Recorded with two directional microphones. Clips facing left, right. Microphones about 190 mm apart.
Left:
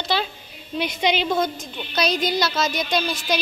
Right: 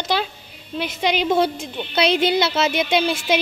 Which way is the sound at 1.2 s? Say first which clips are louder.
Right 4 dB; 30° right (ahead or behind).